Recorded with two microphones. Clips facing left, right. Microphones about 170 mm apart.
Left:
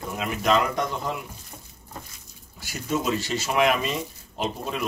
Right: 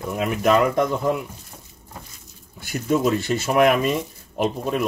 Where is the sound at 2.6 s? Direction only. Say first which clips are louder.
Right 7 dB; 55° right (ahead or behind).